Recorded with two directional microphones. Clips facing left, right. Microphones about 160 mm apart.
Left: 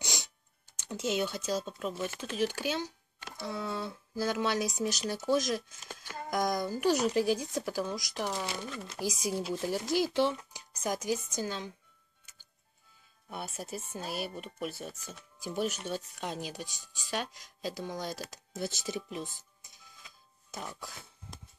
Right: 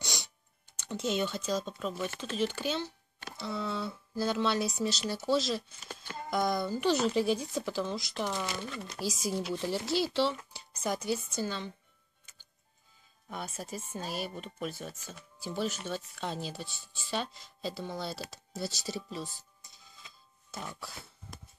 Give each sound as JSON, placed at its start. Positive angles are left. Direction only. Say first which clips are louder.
{"t": 0.7, "sound": "speech", "louder": "even", "side_deg": 10}
{"t": 8.6, "sound": "speech", "louder": "even", "side_deg": 0}
{"t": 9.0, "sound": "speech", "louder": "even", "side_deg": 15}
{"t": 13.3, "sound": "speech", "louder": "even", "side_deg": 10}
{"t": 20.5, "sound": "speech", "louder": "even", "side_deg": 15}